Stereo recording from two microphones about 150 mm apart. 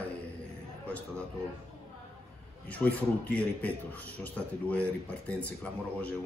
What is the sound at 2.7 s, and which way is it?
A man's voice, 10° left (ahead or behind).